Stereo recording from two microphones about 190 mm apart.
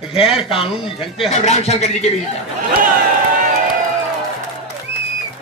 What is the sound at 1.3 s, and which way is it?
Speech, 35° left (ahead or behind).